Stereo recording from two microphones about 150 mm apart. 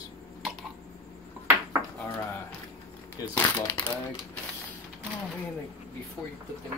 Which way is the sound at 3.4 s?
15° left (ahead or behind).